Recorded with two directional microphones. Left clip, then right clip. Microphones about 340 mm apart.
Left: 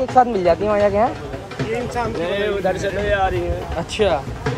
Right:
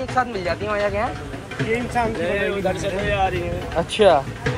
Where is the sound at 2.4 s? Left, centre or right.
Left.